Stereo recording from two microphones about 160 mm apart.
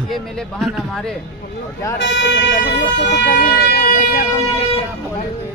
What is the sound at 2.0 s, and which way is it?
Speech, 90° left.